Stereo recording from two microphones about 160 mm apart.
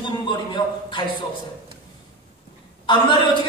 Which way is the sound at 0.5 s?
30° left (ahead or behind).